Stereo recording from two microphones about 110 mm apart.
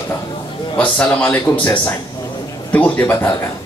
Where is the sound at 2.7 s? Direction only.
15° left (ahead or behind).